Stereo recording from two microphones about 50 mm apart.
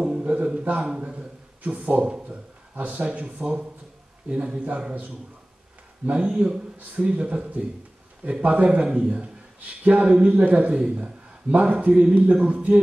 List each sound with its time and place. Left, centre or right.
0.0 s a sound: right
2.7 s speech: right
6.1 s speech: right